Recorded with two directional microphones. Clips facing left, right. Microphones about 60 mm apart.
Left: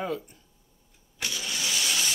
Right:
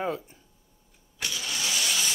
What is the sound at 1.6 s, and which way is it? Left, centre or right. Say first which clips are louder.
Vehicle: even; centre.